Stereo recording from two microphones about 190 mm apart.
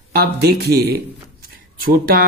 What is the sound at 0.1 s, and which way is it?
Speech, 55° right (ahead or behind).